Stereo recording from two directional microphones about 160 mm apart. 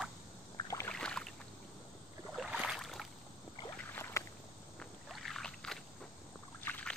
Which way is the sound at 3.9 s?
15° left (ahead or behind).